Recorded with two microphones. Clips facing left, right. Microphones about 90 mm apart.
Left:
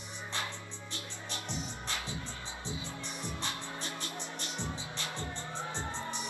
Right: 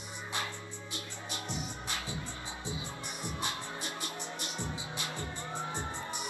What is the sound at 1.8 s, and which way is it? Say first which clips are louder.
Music: even; 15° right (ahead or behind).